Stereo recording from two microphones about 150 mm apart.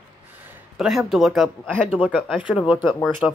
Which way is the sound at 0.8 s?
5° right (ahead or behind).